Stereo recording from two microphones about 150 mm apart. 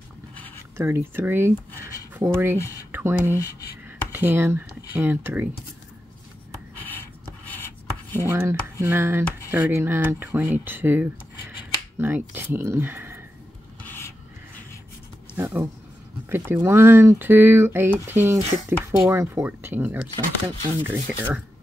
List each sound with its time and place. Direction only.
0.7 s speech: 15° right (ahead or behind)
6.9 s writing: 15° left (ahead or behind)
8.2 s speech: 20° right (ahead or behind)
13.8 s rub: 15° left (ahead or behind)
15.3 s speech: 20° right (ahead or behind)